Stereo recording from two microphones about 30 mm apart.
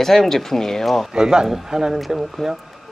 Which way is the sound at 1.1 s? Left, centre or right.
Right.